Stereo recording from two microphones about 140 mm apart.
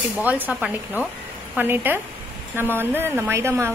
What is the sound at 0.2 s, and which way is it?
A woman's voice, 10° right (ahead or behind).